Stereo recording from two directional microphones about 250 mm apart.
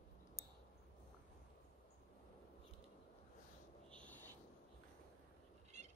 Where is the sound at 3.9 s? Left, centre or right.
Centre.